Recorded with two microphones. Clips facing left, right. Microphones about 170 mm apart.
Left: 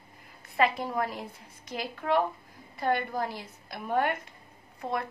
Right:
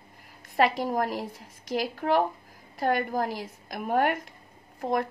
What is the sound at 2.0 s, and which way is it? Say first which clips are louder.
A woman's voice: even; 55° right (ahead or behind).